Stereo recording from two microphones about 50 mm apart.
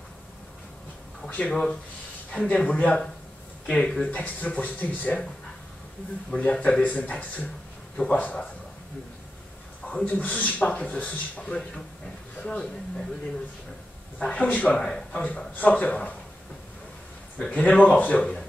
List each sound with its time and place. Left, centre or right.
1.5 s speech: centre
2.3 s speech: left
3.6 s speech: centre
6.3 s speech: left
10.0 s speech: left
14.1 s speech: left
14.8 s speech: centre
15.2 s speech: left
17.6 s speech: left